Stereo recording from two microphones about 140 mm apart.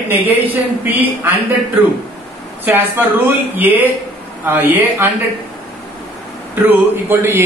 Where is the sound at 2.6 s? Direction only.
15° right (ahead or behind).